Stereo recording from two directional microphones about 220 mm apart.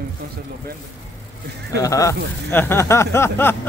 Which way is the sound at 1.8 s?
15° left (ahead or behind).